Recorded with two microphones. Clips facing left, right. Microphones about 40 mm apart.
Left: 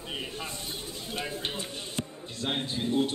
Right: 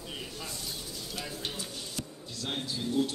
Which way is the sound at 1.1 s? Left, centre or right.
Left.